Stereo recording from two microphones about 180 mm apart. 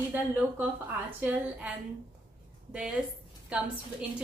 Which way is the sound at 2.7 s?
5° right (ahead or behind).